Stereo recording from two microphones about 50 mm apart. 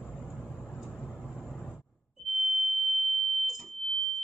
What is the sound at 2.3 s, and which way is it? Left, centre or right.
Fire alarm, centre.